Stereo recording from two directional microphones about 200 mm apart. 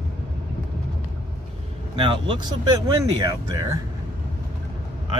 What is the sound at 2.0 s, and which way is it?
Speech, 25° right (ahead or behind).